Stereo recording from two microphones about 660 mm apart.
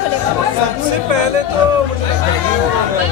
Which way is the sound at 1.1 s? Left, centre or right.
Right.